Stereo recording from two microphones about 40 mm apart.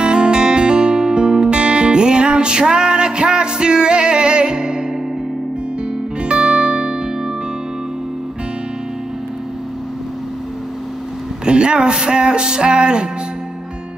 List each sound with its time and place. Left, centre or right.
0.0 s music: right
6.2 s music: right
11.4 s music: right